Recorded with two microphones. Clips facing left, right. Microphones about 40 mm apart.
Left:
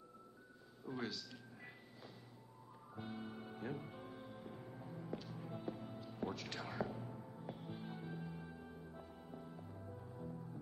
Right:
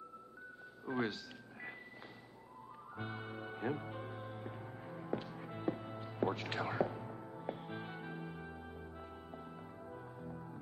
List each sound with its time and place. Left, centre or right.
0.8 s a sound: right
3.0 s music: right
10.1 s music: right